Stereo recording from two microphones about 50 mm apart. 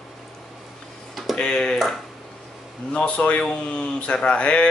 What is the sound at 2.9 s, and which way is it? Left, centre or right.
Speech, left.